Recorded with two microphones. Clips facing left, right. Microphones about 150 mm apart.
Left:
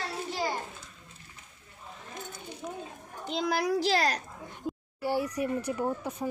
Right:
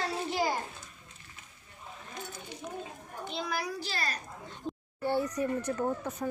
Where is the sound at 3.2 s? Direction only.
90° left.